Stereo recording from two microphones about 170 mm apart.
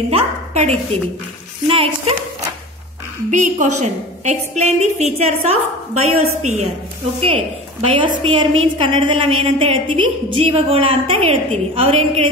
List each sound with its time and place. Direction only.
0.1 s a woman's voice: 35° right (ahead or behind)
3.3 s a woman's voice: 45° right (ahead or behind)